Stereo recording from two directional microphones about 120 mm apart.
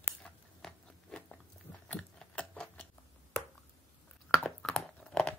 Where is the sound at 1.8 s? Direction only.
10° left (ahead or behind).